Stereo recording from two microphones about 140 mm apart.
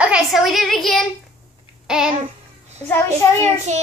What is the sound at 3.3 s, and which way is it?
Speech, 55° right (ahead or behind).